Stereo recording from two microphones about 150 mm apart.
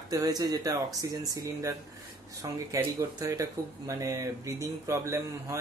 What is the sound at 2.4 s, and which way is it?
Speech, 25° right (ahead or behind).